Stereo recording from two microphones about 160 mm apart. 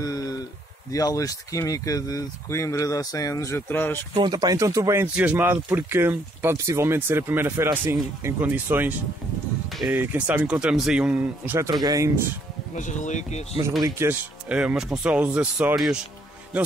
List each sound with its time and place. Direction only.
0.0 s a sound: 20° left (ahead or behind)
0.9 s speech: 20° left (ahead or behind)
4.1 s speech: 25° right (ahead or behind)
5.0 s speech: 10° right (ahead or behind)
9.9 s speech: 10° right (ahead or behind)
12.7 s speech: 50° left (ahead or behind)
13.8 s speech: 15° right (ahead or behind)